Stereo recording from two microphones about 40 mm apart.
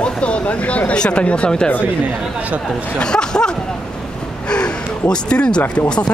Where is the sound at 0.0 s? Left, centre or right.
Left.